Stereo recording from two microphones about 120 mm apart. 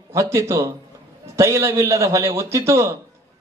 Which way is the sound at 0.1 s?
25° right (ahead or behind).